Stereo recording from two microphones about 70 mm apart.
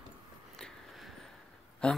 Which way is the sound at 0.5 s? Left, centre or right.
Centre.